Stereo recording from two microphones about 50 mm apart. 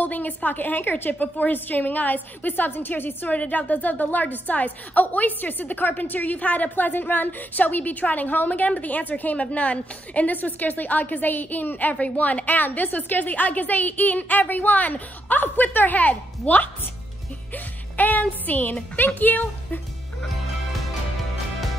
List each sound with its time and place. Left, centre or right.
0.0 s a woman's voice: left
3.3 s a woman's voice: left
11.9 s a woman's voice: left
17.9 s music: left
18.2 s a woman's voice: left